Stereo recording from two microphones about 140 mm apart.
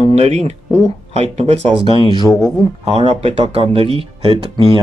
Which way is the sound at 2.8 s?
45° right (ahead or behind).